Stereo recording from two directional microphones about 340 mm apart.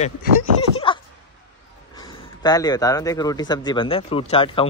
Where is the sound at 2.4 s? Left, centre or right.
Centre.